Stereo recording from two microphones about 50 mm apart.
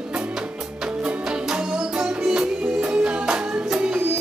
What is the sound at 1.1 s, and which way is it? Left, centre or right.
Music, centre.